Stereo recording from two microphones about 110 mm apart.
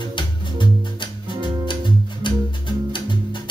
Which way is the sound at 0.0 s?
45° left (ahead or behind).